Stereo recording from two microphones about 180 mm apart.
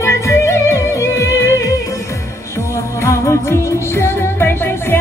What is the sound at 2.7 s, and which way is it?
Music, 15° left (ahead or behind).